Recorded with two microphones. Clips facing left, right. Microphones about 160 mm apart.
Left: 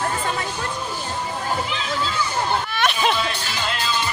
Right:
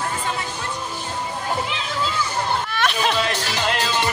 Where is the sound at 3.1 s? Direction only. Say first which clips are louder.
Right 2 dB; 80° right.